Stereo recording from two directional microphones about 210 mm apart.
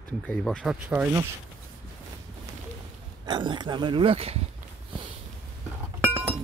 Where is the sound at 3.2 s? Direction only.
20° right (ahead or behind).